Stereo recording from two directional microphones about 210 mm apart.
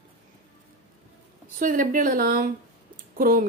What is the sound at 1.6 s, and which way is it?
Speech, 40° right (ahead or behind).